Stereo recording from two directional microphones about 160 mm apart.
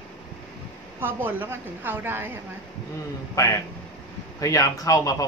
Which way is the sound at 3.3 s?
20° left (ahead or behind).